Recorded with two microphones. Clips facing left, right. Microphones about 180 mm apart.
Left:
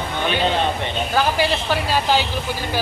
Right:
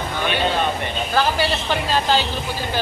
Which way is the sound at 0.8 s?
15° left (ahead or behind).